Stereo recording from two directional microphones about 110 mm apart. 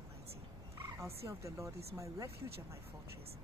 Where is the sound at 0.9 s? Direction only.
25° right (ahead or behind).